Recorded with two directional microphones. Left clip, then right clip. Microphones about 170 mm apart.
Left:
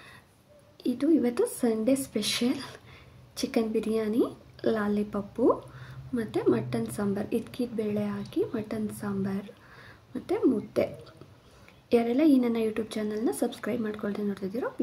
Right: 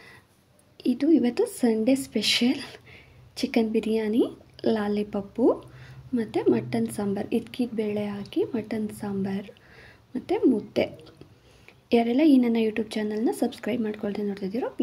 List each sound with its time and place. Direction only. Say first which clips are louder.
0.7 s a woman's voice: right 3 dB; 20° right (ahead or behind)